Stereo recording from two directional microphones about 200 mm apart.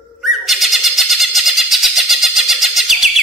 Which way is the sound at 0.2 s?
Centre (ahead or behind).